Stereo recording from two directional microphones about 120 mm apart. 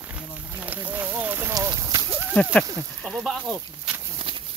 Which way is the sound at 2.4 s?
10° left (ahead or behind).